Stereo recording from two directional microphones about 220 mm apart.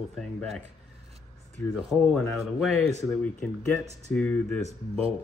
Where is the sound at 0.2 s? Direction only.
Centre (ahead or behind).